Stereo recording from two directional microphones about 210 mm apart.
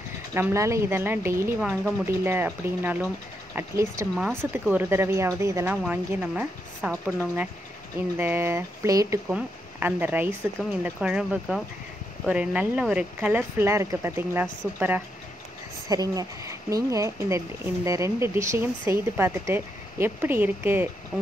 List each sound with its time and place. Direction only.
0.3 s speech: 10° right (ahead or behind); by 7.2 s 5° left (ahead or behind)
8.2 s speech: 10° right (ahead or behind)
21.1 s hoot: 5° left (ahead or behind)